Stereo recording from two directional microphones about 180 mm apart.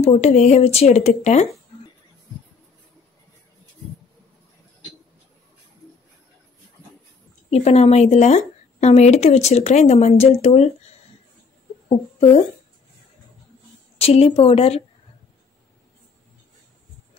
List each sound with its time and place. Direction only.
0.0 s a woman's voice: 35° left (ahead or behind)
7.5 s a woman's voice: 35° left (ahead or behind)
11.9 s speech: 35° left (ahead or behind)
13.9 s a woman's voice: 35° left (ahead or behind)